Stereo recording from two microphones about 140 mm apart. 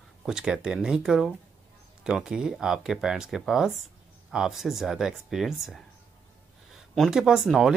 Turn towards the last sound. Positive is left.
turn(degrees=-5)  # may be behind; listen again after turning